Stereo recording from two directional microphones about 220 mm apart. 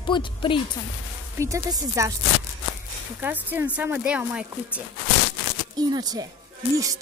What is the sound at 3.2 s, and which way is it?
Speech, 10° right (ahead or behind).